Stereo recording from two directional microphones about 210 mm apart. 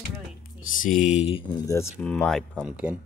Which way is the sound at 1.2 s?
20° left (ahead or behind).